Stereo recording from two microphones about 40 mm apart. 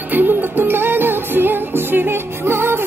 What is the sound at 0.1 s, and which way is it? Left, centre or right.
Music, right.